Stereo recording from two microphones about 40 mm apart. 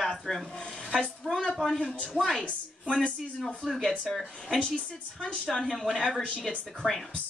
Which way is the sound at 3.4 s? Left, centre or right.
Centre.